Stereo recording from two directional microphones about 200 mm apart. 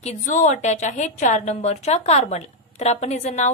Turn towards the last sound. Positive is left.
turn(degrees=35)  # may be behind; listen again after turning